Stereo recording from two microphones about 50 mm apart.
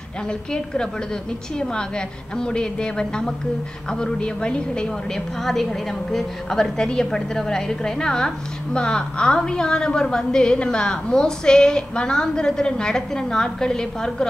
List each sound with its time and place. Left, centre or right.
0.3 s a woman's voice: centre